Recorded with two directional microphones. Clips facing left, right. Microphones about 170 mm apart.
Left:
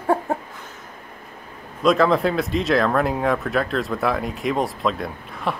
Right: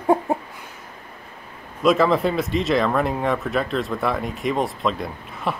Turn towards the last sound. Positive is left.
turn(degrees=0)  # may be behind; listen again after turning